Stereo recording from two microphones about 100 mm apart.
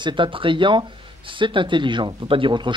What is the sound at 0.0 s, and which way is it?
Speech, 55° right (ahead or behind).